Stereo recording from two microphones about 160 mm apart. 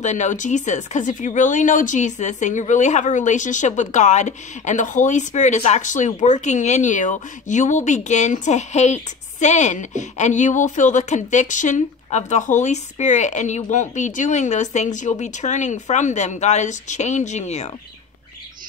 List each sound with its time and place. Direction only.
0.0 s speech: 50° left (ahead or behind)